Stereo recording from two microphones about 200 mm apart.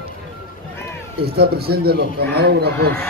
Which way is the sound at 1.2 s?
55° right (ahead or behind).